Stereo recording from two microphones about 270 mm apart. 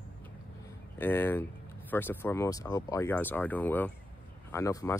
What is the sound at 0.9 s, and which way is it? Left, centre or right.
Speech, centre.